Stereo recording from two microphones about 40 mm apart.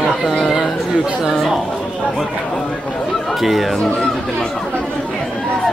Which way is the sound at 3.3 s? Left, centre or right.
Centre.